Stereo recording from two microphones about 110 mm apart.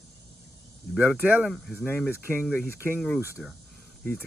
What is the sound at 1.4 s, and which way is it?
Speech, centre (ahead or behind).